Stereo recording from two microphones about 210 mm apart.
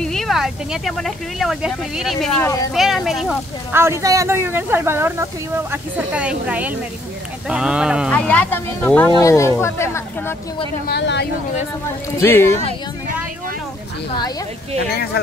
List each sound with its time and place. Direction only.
0.0 s speech: centre (ahead or behind)
8.1 s speech: 5° left (ahead or behind)
10.9 s speech: 55° left (ahead or behind)
12.2 s speech: 10° left (ahead or behind)